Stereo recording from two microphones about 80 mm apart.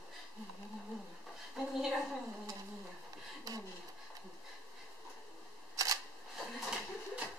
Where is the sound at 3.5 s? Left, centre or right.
Right.